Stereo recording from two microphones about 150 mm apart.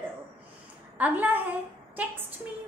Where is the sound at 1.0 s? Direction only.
10° right (ahead or behind).